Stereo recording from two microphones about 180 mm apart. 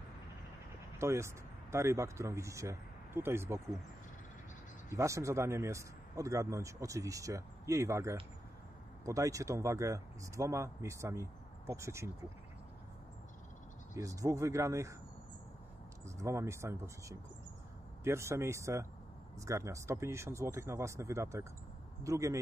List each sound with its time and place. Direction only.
0.9 s speech: 15° right (ahead or behind)
4.8 s a man's voice: 15° right (ahead or behind)
13.9 s a man's voice: 20° right (ahead or behind)
16.2 s a man's voice: 15° right (ahead or behind)